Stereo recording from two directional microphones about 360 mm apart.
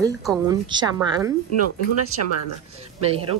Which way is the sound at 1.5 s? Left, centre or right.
Right.